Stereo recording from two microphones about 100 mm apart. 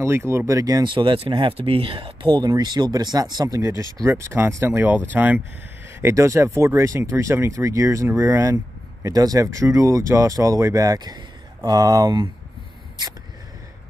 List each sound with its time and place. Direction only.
0.0 s speech: 30° right (ahead or behind)
0.8 s speech: 55° right (ahead or behind)